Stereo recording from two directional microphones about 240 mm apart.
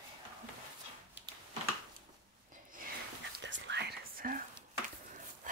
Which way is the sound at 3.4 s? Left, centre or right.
Right.